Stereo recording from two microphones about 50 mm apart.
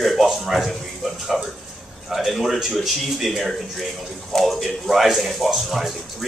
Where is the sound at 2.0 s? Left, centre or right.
Centre.